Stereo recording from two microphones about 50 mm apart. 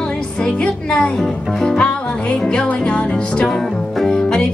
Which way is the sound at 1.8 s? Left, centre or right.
Left.